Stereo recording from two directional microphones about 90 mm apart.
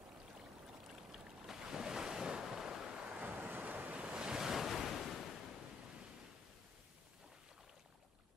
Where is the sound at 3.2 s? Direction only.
20° right (ahead or behind); by 5.2 s centre (ahead or behind).